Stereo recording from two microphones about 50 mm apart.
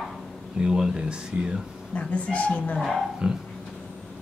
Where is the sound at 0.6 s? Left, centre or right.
Centre.